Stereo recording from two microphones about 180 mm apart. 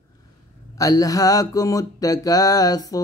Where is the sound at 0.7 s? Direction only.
20° left (ahead or behind).